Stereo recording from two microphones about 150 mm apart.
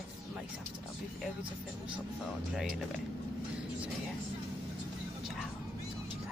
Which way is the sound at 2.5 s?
Centre (ahead or behind).